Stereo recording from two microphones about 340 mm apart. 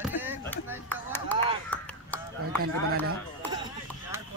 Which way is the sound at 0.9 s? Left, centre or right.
Centre.